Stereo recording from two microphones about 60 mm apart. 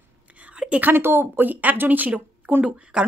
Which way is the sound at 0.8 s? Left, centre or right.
Right.